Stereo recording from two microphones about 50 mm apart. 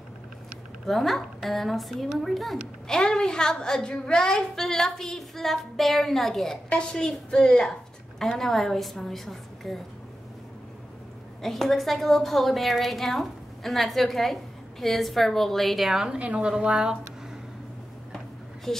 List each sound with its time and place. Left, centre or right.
0.8 s a woman's voice: centre
2.9 s a woman's voice: centre
11.4 s a woman's voice: centre
16.1 s a woman's voice: right
18.1 s a sound: centre